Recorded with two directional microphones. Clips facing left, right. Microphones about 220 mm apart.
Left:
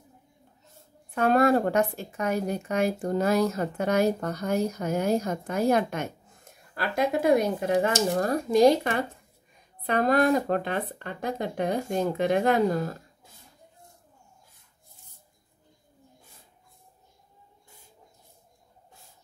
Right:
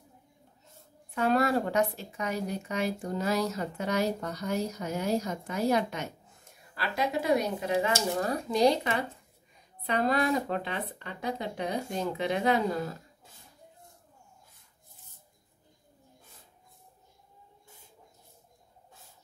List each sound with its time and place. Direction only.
1.1 s a woman's voice: 50° left (ahead or behind)